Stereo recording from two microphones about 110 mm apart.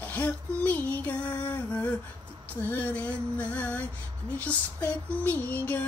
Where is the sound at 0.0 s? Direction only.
15° left (ahead or behind).